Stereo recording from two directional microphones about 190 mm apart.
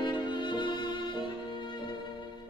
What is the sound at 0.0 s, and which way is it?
Music, 25° left (ahead or behind).